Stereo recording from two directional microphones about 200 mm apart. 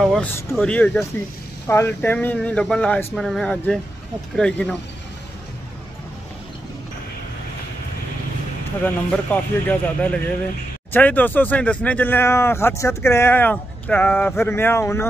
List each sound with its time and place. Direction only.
0.0 s speech: centre (ahead or behind)
8.8 s speech: 10° left (ahead or behind)